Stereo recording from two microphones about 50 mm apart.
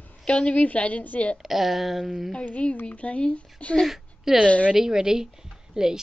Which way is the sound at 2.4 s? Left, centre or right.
Left.